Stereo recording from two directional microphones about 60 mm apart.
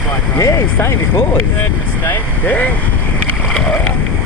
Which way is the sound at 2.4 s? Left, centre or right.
Left.